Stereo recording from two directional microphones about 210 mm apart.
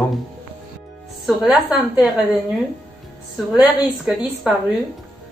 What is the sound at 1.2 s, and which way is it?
A woman's voice, centre (ahead or behind).